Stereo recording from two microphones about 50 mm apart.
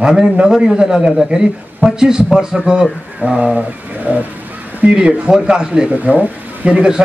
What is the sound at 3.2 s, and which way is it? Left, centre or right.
Speech, right.